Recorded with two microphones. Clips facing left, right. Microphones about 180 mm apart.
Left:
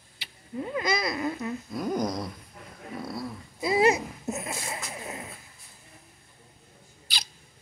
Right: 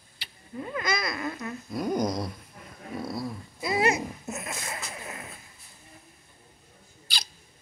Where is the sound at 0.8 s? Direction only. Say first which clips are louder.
Left 2 dB; 30° left (ahead or behind).